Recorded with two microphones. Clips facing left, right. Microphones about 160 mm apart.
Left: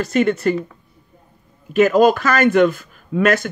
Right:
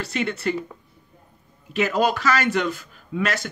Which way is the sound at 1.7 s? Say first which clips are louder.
Left 9 dB; 45° left (ahead or behind).